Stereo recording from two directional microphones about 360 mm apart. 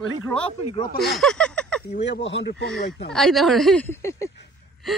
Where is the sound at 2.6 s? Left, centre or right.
Centre.